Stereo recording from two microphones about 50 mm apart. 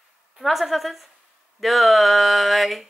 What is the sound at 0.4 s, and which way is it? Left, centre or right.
A woman's voice, centre.